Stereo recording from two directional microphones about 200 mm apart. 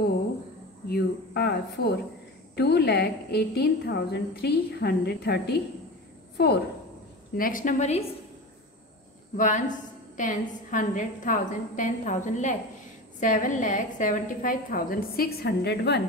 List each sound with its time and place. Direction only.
0.8 s a woman's voice: 50° left (ahead or behind)
7.3 s a woman's voice: 45° left (ahead or behind)
9.4 s a woman's voice: 40° left (ahead or behind); by 16.0 s 55° left (ahead or behind)